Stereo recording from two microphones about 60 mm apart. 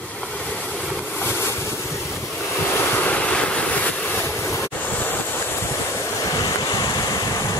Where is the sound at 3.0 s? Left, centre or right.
Left.